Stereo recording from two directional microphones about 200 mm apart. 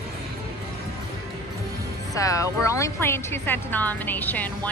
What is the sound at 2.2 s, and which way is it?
A woman's voice, 15° left (ahead or behind).